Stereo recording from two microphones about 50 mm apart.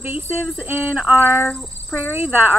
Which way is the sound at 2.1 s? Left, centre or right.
Right.